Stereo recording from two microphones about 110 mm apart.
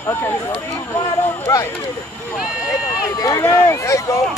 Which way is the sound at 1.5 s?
25° left (ahead or behind).